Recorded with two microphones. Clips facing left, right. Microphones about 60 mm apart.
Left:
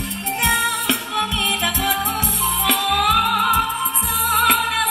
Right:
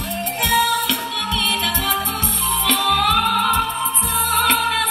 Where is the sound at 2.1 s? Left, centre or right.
Centre.